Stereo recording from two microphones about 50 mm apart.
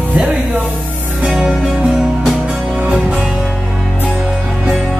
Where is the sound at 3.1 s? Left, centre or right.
Centre.